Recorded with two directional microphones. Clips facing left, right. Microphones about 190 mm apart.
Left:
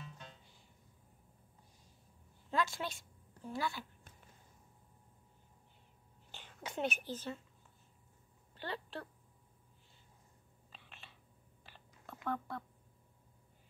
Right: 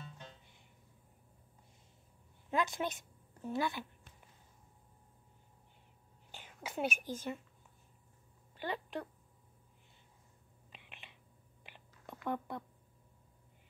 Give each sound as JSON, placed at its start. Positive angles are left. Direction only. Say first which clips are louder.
{"t": 2.5, "sound": "a woman's voice", "louder": "right 2 dB", "side_deg": -20}
{"t": 6.3, "sound": "speech", "louder": "right 1 dB", "side_deg": -10}
{"t": 8.5, "sound": "speech", "louder": "right 4 dB", "side_deg": -10}
{"t": 10.7, "sound": "a sound", "louder": "right 1 dB", "side_deg": -15}
{"t": 12.3, "sound": "speech", "louder": "right 1 dB", "side_deg": -20}